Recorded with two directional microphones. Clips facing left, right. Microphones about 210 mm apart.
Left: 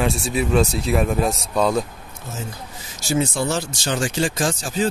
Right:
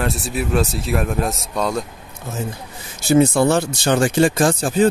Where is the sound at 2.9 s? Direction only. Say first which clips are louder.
Right 8 dB; 55° right (ahead or behind).